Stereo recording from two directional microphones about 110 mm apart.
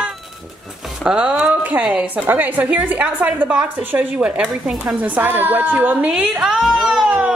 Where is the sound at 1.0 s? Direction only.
10° right (ahead or behind).